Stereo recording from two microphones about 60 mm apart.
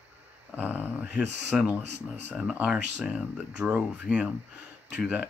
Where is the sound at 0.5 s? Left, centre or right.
Right.